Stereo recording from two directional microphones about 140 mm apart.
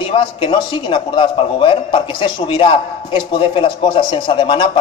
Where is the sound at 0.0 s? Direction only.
35° left (ahead or behind).